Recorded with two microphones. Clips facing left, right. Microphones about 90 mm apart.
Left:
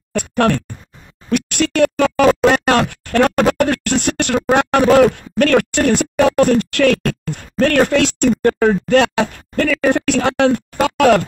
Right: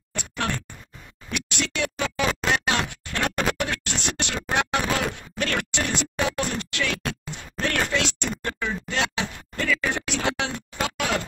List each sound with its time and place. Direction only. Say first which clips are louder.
0.1 s speech: left 13 dB; 55° left (ahead or behind)
1.3 s a sound: left 13 dB; 50° left (ahead or behind)
8.4 s speech: left 16 dB; 50° left (ahead or behind)